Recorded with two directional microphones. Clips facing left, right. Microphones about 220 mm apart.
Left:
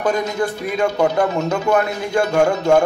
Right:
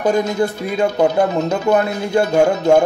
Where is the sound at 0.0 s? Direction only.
25° right (ahead or behind).